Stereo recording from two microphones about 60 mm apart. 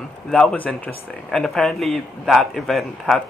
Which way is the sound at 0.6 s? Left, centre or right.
Left.